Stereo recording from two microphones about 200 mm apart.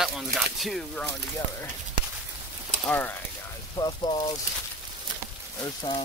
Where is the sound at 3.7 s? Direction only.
20° left (ahead or behind).